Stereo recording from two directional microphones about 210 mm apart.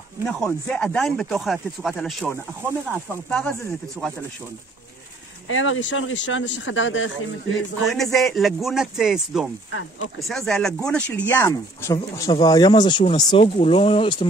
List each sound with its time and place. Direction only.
0.2 s speech: centre (ahead or behind)
5.5 s speech: 70° left (ahead or behind)
7.8 s speech: centre (ahead or behind)
9.7 s speech: 70° left (ahead or behind)
10.2 s speech: centre (ahead or behind); by 14.2 s 25° left (ahead or behind)